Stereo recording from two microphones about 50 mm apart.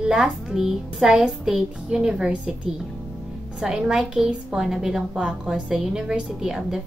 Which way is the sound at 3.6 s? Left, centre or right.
Centre.